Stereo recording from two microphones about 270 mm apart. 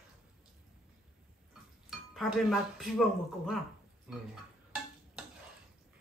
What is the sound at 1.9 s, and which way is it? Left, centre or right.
Speech, centre.